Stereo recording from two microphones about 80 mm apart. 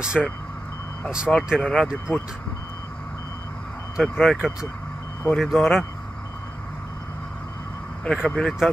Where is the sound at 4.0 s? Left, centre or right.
Centre.